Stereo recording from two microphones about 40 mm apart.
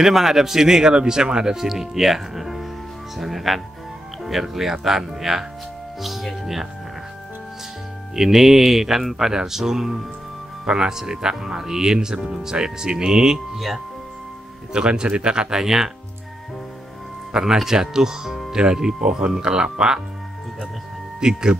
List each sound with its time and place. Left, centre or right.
0.0 s speech: centre
5.9 s music: centre
6.4 s speech: centre
8.2 s speech: centre
14.7 s speech: right
15.6 s speech: centre
17.3 s speech: centre
21.2 s speech: centre